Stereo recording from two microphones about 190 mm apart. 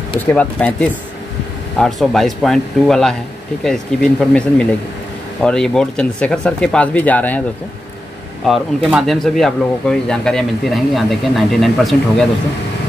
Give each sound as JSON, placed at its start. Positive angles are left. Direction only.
{"t": 0.3, "sound": "speech", "side_deg": 5}
{"t": 8.5, "sound": "speech", "side_deg": 0}